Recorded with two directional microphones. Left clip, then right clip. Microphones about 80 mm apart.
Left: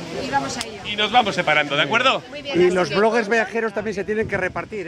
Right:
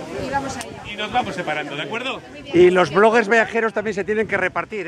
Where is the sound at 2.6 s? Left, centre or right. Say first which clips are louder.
Right 4 dB; right.